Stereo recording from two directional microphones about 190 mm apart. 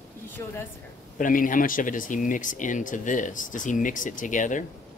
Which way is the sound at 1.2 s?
45° left (ahead or behind).